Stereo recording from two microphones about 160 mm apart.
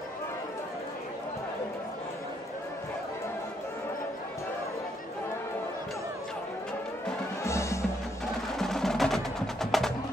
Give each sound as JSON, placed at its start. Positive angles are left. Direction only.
{"t": 7.4, "sound": "music", "side_deg": 15}
{"t": 8.5, "sound": "wood block", "side_deg": 0}